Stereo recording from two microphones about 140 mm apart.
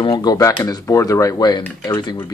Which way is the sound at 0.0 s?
35° left (ahead or behind).